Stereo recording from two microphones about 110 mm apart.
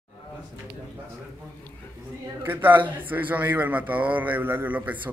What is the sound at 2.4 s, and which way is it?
A man's voice, 20° right (ahead or behind).